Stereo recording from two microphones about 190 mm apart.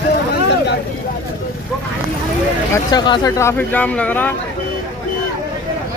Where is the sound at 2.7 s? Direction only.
20° left (ahead or behind).